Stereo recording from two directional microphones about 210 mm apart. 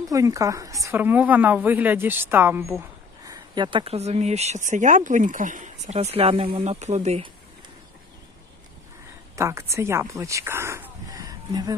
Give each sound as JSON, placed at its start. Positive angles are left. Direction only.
{"t": 0.1, "sound": "a woman's voice", "side_deg": -15}
{"t": 3.3, "sound": "speech", "side_deg": -20}
{"t": 9.3, "sound": "speech", "side_deg": -15}